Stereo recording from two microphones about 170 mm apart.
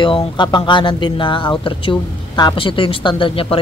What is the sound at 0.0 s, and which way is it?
Speech, 30° left (ahead or behind).